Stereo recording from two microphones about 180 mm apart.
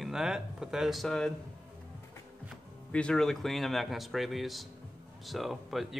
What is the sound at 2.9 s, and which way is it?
Speech, 5° left (ahead or behind).